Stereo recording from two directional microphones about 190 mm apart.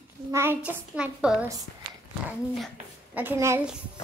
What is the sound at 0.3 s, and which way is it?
A woman's voice, 15° right (ahead or behind).